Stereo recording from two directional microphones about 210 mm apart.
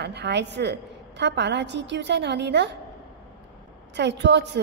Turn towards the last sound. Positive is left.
turn(degrees=-55)  # may be behind; listen again after turning